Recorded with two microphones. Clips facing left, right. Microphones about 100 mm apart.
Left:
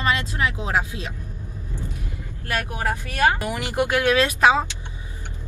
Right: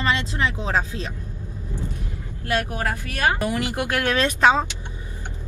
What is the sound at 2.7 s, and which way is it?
Speech, 20° left (ahead or behind).